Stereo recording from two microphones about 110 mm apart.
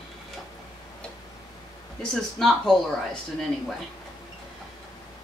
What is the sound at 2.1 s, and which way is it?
Speech, centre (ahead or behind).